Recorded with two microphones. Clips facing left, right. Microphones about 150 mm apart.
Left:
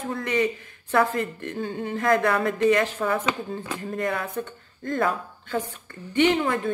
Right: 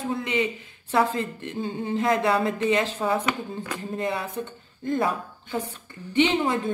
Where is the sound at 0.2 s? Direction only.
20° right (ahead or behind).